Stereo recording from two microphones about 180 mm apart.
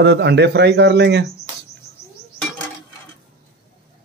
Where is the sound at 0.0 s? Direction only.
70° right (ahead or behind).